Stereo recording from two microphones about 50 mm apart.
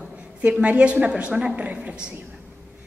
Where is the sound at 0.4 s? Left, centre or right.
Right.